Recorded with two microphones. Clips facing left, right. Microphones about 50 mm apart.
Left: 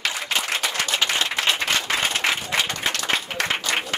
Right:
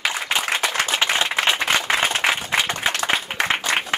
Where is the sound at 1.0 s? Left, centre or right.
Centre.